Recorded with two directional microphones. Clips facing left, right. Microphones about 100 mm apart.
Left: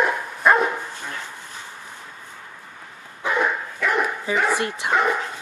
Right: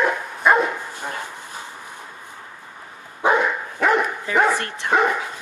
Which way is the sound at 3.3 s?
50° right (ahead or behind).